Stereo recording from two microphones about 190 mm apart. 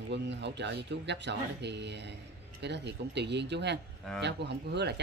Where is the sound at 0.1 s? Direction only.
65° right (ahead or behind).